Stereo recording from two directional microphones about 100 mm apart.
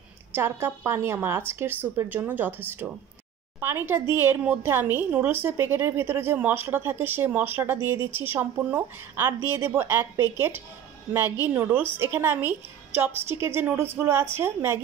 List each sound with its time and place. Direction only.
0.3 s a woman's voice: 25° right (ahead or behind)